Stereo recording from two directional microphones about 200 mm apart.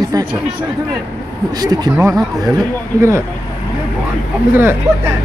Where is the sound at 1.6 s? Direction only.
20° right (ahead or behind).